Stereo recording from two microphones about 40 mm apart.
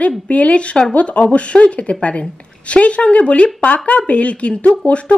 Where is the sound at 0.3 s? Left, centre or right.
Left.